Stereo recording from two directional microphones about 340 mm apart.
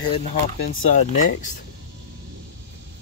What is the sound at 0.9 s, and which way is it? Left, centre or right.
Speech, left.